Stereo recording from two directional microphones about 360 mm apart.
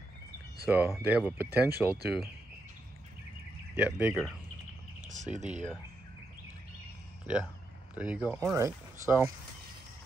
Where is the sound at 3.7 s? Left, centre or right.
Centre.